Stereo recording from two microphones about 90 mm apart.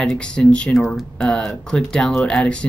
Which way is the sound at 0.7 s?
Centre (ahead or behind).